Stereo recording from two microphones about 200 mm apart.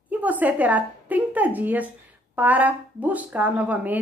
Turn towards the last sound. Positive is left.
turn(degrees=-5)  # may be behind; listen again after turning